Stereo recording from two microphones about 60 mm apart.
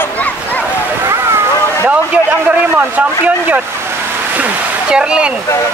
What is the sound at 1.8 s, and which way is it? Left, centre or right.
Speech, right.